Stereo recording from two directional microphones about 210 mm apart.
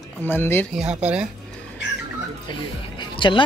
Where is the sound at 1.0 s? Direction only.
5° right (ahead or behind).